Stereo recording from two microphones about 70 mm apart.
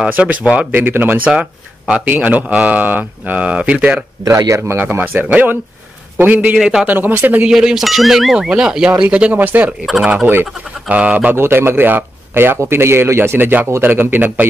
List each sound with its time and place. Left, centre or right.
0.1 s speech: centre
0.7 s speech: right
1.3 s speech: centre
4.2 s speech: right
4.6 s speech: right
6.6 s speech: centre
6.9 s speech: right
7.4 s speech: centre; by 9.8 s right
9.8 s speech: centre
11.3 s a man's voice: right